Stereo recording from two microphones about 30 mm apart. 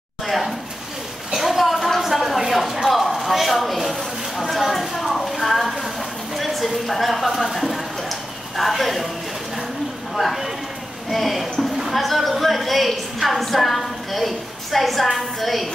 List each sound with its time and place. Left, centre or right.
0.3 s speech: centre
1.3 s a sound: centre
7.2 s clip-clop: centre
10.1 s speech: centre
11.1 s a sound: centre
11.8 s a woman's voice: centre